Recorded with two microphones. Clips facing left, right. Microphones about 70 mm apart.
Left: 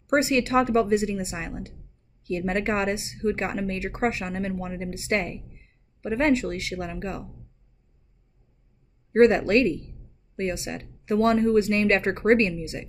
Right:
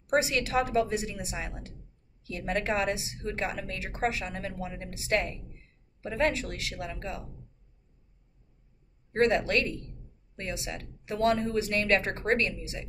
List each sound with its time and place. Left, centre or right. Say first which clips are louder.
0.1 s a woman's voice: left 5 dB; left
9.1 s a woman's voice: left 7 dB; left